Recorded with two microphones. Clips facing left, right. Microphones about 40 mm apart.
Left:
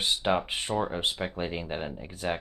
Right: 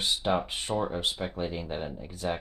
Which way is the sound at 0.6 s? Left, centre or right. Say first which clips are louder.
Even; centre.